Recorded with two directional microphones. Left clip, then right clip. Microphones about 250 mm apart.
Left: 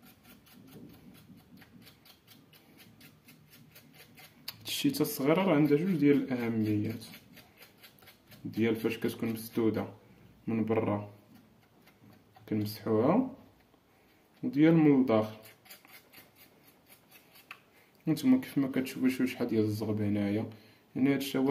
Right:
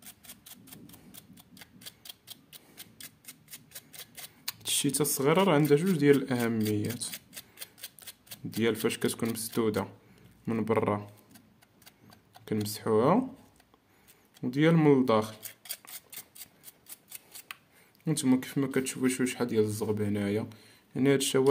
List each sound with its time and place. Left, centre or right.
4.5 s speech: right
8.5 s speech: right
12.4 s speech: right
14.4 s speech: right
18.0 s speech: right